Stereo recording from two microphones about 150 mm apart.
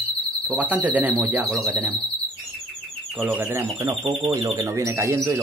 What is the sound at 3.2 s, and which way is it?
Speech, 15° right (ahead or behind).